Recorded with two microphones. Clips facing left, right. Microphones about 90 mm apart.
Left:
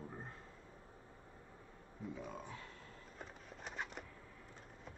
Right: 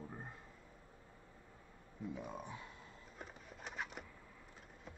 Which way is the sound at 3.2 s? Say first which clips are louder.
Even; centre (ahead or behind).